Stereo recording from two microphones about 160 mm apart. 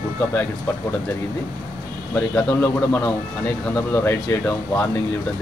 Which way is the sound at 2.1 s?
15° left (ahead or behind).